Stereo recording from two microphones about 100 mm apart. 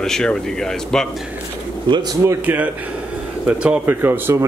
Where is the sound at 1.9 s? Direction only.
45° right (ahead or behind).